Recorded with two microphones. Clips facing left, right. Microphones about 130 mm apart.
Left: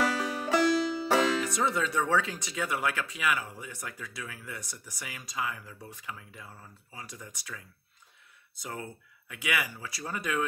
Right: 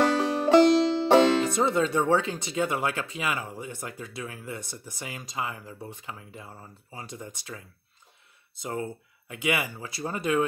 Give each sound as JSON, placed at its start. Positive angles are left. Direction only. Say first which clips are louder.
{"t": 0.2, "sound": "music", "louder": "right 8 dB", "side_deg": -30}
{"t": 0.7, "sound": "speech", "louder": "right 7 dB", "side_deg": -25}